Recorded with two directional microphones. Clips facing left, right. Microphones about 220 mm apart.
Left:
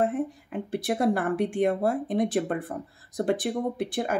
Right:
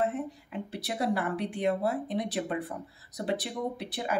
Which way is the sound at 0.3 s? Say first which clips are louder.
Left 6 dB; 50° left (ahead or behind).